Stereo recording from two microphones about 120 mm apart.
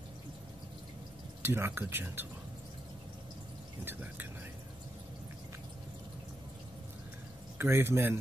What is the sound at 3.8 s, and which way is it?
Speech, 15° right (ahead or behind).